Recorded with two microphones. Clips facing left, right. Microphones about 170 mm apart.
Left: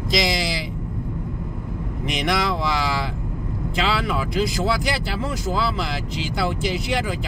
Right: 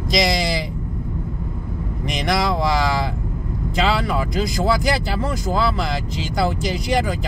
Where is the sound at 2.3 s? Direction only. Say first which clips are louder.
Right 4 dB; 40° right (ahead or behind).